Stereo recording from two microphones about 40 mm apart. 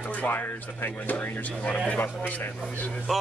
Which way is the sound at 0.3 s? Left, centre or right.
Left.